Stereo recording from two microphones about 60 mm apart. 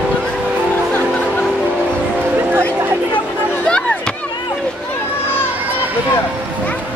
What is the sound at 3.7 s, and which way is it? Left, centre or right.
Chop, centre.